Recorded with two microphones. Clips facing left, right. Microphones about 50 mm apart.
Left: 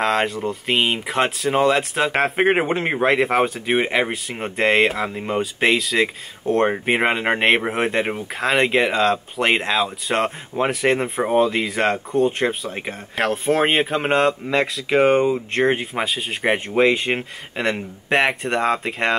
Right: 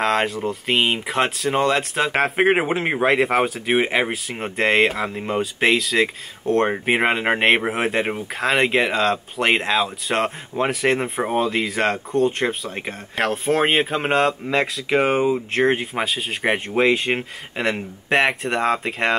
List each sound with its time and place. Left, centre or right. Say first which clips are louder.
0.0 s speech: even; centre